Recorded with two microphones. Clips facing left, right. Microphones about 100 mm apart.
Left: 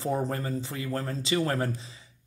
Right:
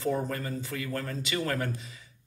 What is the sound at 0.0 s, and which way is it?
Speech, 30° left (ahead or behind).